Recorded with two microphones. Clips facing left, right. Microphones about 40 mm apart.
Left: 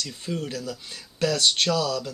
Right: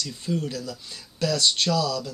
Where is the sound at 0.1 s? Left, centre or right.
Left.